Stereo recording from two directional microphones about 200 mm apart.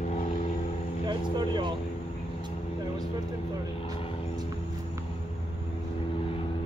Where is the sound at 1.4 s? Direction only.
25° right (ahead or behind).